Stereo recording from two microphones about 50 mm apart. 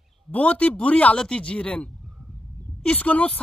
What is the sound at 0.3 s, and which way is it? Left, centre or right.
A woman's voice, left.